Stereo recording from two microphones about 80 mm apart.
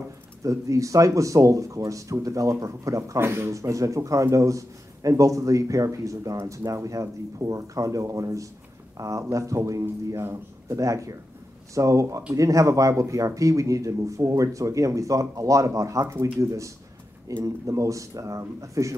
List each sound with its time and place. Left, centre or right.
0.4 s a man's voice: right